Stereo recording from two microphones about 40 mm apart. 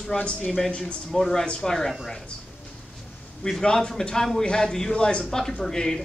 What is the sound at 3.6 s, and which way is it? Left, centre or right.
Speech, left.